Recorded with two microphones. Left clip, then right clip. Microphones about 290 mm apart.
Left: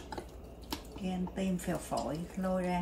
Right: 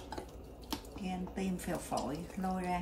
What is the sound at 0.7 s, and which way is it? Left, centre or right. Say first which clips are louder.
A woman's voice: left 1 dB; centre.